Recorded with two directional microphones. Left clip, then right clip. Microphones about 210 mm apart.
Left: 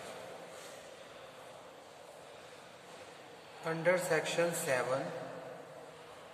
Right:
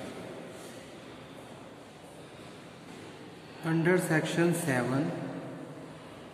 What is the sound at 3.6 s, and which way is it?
A woman's voice, 25° right (ahead or behind).